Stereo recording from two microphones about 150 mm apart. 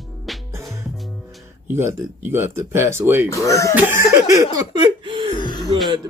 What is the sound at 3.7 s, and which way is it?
Cough, 20° right (ahead or behind).